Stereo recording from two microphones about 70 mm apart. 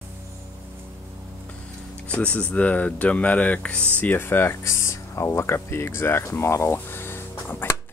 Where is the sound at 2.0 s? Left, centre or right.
Left.